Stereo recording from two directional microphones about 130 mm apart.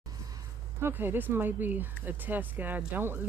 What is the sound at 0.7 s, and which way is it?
Speech, 15° right (ahead or behind).